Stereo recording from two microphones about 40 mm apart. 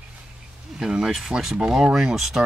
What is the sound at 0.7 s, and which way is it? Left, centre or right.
Speech, centre.